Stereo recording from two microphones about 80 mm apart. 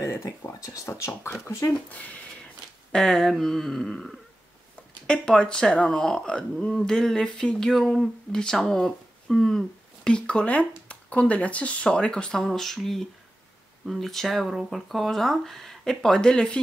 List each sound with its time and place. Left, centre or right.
0.0 s a sound: left
0.5 s speech: left
1.9 s speech: centre
2.9 s speech: centre